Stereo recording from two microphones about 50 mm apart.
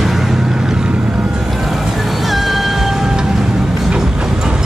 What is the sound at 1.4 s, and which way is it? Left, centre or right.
Music, centre.